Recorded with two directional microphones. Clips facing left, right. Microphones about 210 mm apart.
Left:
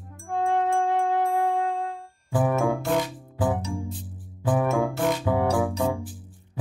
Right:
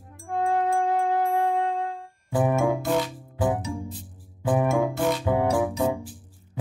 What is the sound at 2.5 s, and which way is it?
Music, 15° right (ahead or behind).